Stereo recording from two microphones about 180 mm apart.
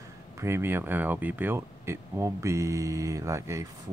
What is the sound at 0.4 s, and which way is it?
Speech, 15° right (ahead or behind).